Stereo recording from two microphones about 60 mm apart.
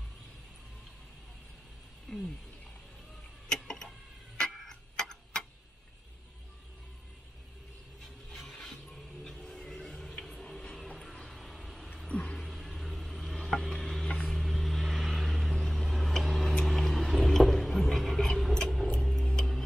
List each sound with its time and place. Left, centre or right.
2.0 s speech: centre
3.5 s tick-tock: centre
8.3 s music: centre
11.2 s a sound: centre
12.1 s a sound: centre
12.4 s a sound: centre
14.0 s mechanisms: centre
14.3 s vehicle: centre
18.9 s music: centre